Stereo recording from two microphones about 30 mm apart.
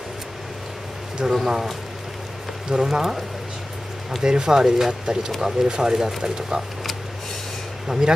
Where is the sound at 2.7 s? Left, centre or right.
Right.